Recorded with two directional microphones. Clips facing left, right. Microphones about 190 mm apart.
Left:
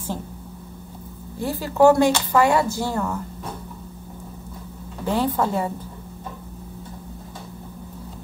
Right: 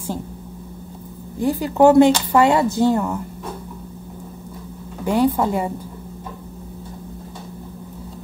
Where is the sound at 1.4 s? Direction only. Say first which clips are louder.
Right 2 dB; 15° right (ahead or behind).